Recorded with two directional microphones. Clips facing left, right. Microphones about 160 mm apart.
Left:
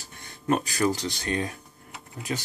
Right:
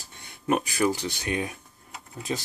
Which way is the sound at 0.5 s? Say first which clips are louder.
Even; 15° right (ahead or behind).